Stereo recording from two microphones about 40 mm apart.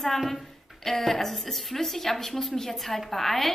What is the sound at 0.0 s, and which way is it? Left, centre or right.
A woman's voice, centre.